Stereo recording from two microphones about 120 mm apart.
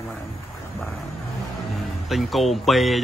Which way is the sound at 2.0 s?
Centre (ahead or behind).